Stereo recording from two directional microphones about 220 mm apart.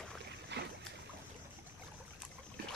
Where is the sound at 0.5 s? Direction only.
50° right (ahead or behind).